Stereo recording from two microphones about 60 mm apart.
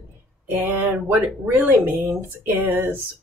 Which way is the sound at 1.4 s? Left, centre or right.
Right.